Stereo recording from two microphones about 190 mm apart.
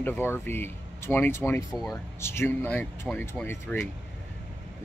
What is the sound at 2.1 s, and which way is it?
Speech, 15° left (ahead or behind).